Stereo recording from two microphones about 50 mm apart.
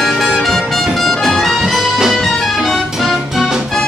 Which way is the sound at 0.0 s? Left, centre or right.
Centre.